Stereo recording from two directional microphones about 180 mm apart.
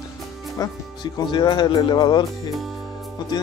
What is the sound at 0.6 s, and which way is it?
Speech, 20° left (ahead or behind).